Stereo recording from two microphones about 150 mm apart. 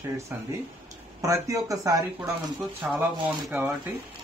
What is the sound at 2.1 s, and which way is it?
Speech, 10° right (ahead or behind).